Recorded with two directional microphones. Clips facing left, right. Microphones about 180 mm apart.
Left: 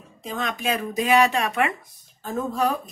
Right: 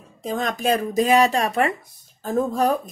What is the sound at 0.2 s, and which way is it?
Speech, 45° right (ahead or behind).